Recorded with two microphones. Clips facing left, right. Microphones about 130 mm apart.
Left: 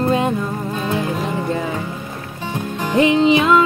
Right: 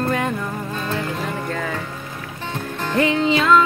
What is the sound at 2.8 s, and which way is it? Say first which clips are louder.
Music: left 5 dB; 20° left (ahead or behind).